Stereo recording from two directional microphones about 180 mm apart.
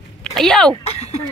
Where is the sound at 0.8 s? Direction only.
35° left (ahead or behind).